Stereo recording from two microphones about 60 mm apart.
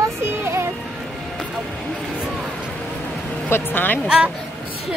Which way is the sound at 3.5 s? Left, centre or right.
Left.